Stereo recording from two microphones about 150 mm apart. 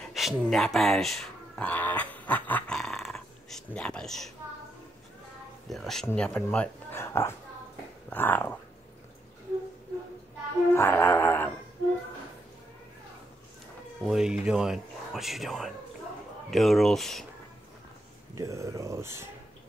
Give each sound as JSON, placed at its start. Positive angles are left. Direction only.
{"t": 0.0, "sound": "speech", "side_deg": 0}
{"t": 5.7, "sound": "speech", "side_deg": 0}
{"t": 10.7, "sound": "music", "side_deg": 15}
{"t": 14.0, "sound": "speech", "side_deg": -5}
{"t": 18.3, "sound": "speech", "side_deg": -20}